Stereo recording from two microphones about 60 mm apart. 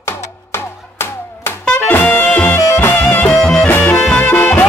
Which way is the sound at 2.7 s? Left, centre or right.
Left.